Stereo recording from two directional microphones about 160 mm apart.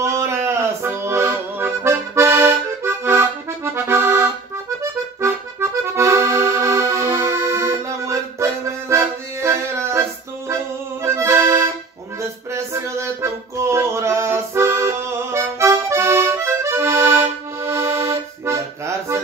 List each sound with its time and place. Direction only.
0.0 s accordion: 15° right (ahead or behind)
12.2 s music: 15° right (ahead or behind)